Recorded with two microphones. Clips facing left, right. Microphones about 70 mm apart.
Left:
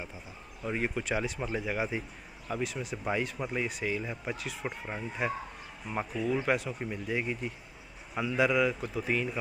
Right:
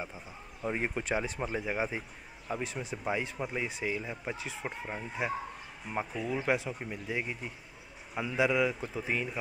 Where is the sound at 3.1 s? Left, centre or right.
Centre.